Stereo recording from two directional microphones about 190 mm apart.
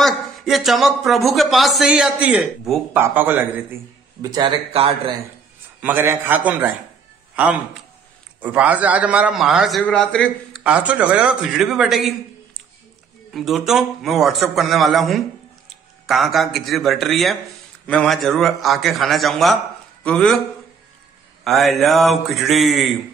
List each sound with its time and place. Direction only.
0.0 s speech: centre (ahead or behind)
4.2 s speech: 20° right (ahead or behind)
5.8 s speech: 10° right (ahead or behind)
8.4 s a man's voice: 10° right (ahead or behind)
10.6 s speech: 5° right (ahead or behind)
13.3 s a man's voice: centre (ahead or behind)
21.5 s a man's voice: centre (ahead or behind)